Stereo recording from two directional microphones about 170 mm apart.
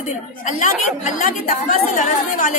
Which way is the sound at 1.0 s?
50° left (ahead or behind).